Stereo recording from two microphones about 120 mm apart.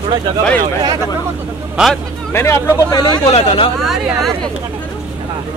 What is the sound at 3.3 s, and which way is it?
Speech, 55° left (ahead or behind).